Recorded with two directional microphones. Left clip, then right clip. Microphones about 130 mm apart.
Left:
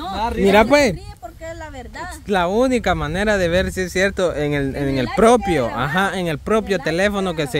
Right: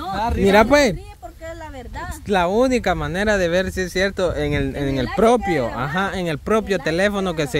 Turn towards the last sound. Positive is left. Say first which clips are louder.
# left 1 dB
turn(degrees=0)  # may be behind; listen again after turning